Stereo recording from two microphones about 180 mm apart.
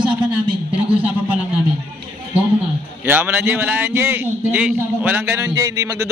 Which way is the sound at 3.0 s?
10° right (ahead or behind).